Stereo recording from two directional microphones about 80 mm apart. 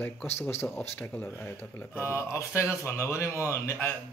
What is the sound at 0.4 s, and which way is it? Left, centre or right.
Speech, left.